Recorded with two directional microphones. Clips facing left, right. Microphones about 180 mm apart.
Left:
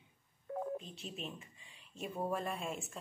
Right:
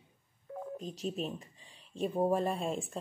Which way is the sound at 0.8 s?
40° right (ahead or behind).